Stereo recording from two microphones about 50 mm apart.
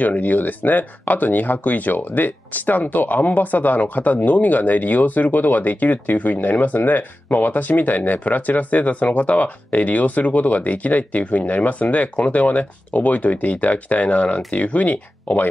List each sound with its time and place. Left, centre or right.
0.0 s speech: left